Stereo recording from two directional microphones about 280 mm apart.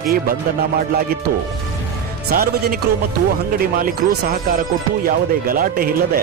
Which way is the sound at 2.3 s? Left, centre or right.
Right.